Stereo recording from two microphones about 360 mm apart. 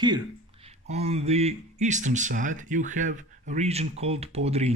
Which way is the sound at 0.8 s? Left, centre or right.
Centre.